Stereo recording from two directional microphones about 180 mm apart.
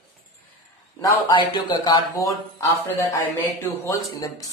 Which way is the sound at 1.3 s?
25° left (ahead or behind).